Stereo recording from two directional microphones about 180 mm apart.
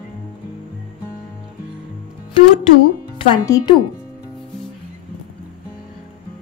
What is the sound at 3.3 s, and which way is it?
Speech, 25° left (ahead or behind).